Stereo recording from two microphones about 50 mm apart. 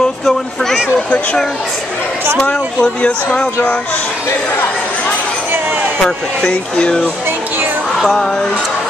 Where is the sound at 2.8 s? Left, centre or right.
Left.